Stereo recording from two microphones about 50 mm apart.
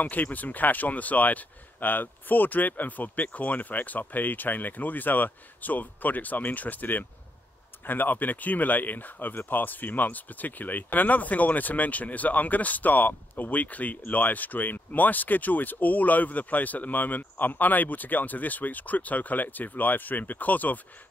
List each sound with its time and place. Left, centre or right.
0.0 s speech: left